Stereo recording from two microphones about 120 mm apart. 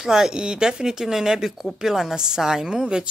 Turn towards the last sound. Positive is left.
turn(degrees=-5)  # may be behind; listen again after turning